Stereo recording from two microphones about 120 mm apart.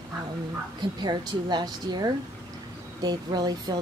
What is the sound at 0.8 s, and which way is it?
Speech, 35° right (ahead or behind).